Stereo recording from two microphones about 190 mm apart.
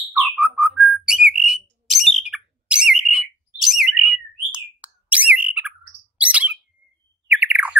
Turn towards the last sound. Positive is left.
turn(degrees=-5)  # may be behind; listen again after turning